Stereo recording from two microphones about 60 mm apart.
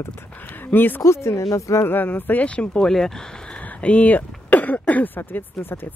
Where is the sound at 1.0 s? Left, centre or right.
Left.